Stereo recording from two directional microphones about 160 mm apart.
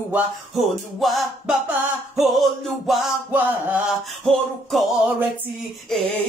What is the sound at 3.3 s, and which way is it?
Chant, 10° right (ahead or behind).